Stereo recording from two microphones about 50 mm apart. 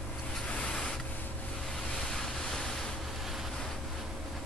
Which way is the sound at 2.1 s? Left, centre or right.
Centre.